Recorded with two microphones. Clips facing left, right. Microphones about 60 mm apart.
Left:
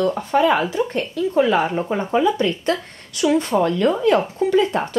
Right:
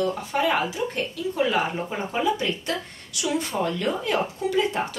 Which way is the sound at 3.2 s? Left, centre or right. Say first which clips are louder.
Left 8 dB; left.